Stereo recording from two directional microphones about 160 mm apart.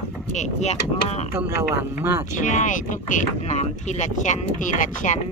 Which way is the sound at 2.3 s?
50° left (ahead or behind).